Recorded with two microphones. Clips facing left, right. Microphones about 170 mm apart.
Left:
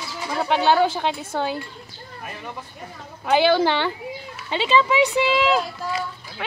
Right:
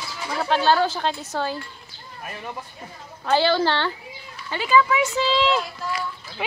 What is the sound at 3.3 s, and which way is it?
A woman's voice, 15° left (ahead or behind).